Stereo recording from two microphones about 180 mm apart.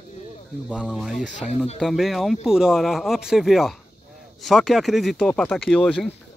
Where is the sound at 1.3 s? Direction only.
40° left (ahead or behind).